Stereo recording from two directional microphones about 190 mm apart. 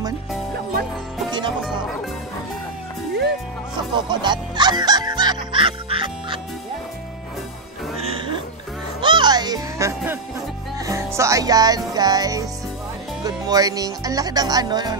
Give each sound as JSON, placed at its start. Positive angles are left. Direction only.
{"t": 3.7, "sound": "music", "side_deg": -25}
{"t": 9.0, "sound": "music", "side_deg": -25}
{"t": 13.2, "sound": "speech", "side_deg": -20}